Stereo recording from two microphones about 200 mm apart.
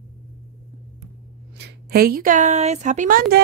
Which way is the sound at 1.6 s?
50° right (ahead or behind).